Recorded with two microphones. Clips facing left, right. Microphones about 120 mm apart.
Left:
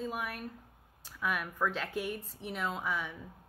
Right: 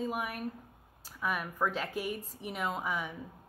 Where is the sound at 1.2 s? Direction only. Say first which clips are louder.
Right 1 dB; 5° right (ahead or behind).